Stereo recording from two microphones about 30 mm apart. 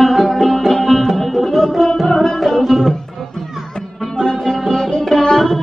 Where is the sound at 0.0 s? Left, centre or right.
Centre.